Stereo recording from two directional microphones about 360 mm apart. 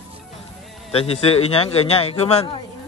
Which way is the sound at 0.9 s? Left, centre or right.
Centre.